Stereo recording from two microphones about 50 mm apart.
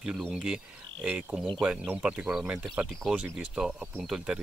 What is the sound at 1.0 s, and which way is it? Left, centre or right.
Speech, right.